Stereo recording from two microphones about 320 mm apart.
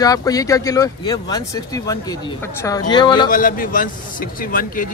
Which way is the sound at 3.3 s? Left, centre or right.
Left.